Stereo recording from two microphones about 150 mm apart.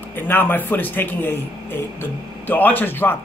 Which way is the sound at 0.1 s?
15° left (ahead or behind).